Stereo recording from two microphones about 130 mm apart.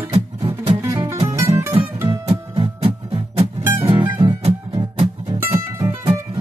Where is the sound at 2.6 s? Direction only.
50° right (ahead or behind).